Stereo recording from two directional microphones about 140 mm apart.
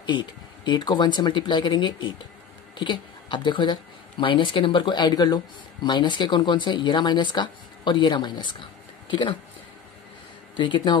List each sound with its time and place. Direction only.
0.0 s speech: 35° left (ahead or behind)
10.6 s speech: 35° left (ahead or behind)